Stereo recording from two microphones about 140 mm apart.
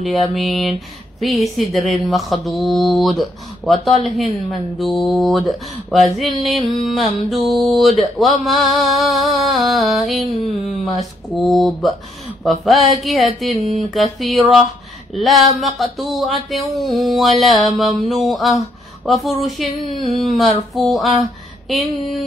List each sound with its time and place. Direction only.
0.0 s speech: centre (ahead or behind)
13.6 s speech: 55° right (ahead or behind)
13.8 s speech: centre (ahead or behind)